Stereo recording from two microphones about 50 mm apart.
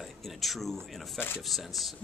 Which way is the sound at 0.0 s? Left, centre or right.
Centre.